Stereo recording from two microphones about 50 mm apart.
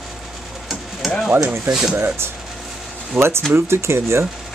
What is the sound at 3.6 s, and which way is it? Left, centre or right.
Speech, right.